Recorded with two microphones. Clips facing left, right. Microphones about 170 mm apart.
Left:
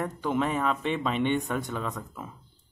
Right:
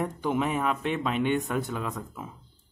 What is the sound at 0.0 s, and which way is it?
Speech, 10° right (ahead or behind).